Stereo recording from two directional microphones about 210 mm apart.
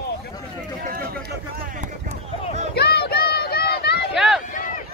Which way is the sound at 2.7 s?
50° left (ahead or behind).